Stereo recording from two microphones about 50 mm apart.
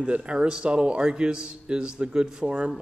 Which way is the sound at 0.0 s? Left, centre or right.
Right.